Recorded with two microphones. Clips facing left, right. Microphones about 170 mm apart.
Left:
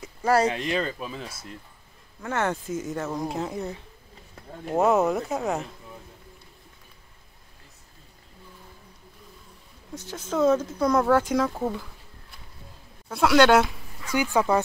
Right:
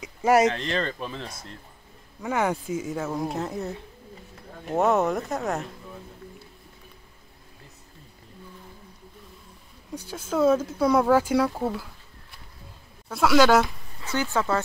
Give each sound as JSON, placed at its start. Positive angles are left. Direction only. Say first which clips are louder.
{"t": 0.5, "sound": "speech", "louder": "even", "side_deg": 10}
{"t": 2.2, "sound": "speech", "louder": "right 2 dB", "side_deg": -10}
{"t": 9.9, "sound": "speech", "louder": "right 1 dB", "side_deg": -10}
{"t": 13.1, "sound": "speech", "louder": "left 1 dB", "side_deg": 0}
{"t": 14.1, "sound": "speech", "louder": "left 3 dB", "side_deg": 15}